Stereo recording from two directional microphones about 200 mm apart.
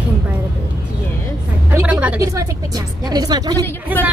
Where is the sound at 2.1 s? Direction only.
15° right (ahead or behind).